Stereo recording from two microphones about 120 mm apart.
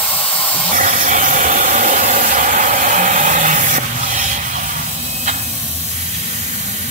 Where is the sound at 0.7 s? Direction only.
90° right.